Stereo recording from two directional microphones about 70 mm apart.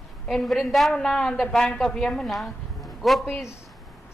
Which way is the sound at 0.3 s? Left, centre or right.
Centre.